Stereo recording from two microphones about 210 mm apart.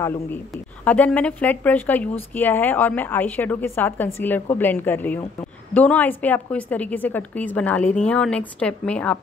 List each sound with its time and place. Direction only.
0.5 s a woman's voice: 5° left (ahead or behind)